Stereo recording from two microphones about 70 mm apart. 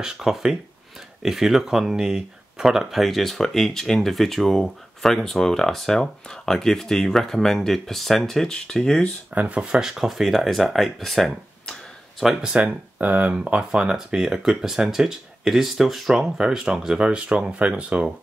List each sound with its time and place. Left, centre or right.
0.0 s speech: centre
9.3 s speech: right
9.6 s speech: centre
12.6 s speech: right